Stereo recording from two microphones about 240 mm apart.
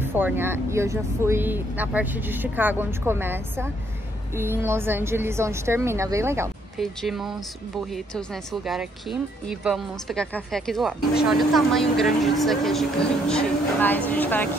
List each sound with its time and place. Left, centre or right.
0.0 s speech: centre
6.8 s speech: centre